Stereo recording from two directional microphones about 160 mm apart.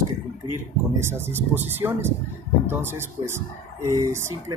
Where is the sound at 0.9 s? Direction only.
15° right (ahead or behind).